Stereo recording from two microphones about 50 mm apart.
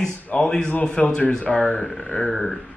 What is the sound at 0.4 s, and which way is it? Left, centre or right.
A man's voice, centre.